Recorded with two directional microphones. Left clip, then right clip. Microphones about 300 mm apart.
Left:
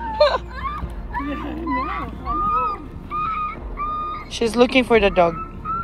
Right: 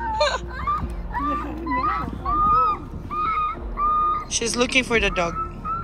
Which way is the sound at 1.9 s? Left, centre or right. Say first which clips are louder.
Right 2 dB; centre.